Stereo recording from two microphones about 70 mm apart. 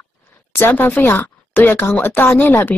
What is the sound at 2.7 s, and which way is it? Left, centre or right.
Speech, centre.